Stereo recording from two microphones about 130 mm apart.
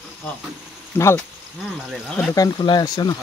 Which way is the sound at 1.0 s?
15° left (ahead or behind).